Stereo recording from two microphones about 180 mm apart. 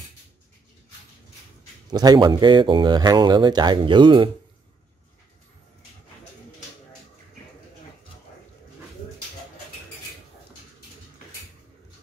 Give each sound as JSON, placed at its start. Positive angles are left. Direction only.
{"t": 1.9, "sound": "speech", "side_deg": -25}